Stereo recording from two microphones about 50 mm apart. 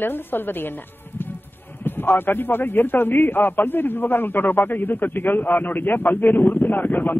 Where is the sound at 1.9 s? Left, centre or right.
Left.